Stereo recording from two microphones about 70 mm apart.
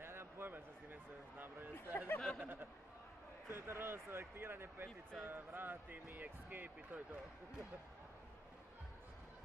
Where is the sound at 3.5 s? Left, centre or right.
Right.